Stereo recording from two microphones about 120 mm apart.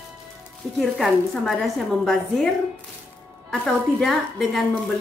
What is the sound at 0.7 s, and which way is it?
A woman's voice, centre (ahead or behind).